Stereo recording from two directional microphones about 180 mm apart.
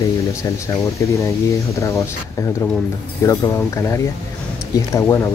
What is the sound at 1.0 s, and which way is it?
Speech, 15° left (ahead or behind).